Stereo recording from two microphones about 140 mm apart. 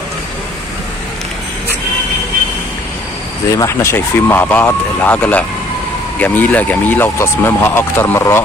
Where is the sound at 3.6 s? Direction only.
20° left (ahead or behind).